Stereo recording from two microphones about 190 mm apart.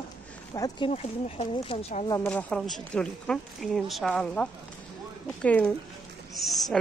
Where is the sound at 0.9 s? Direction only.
35° left (ahead or behind).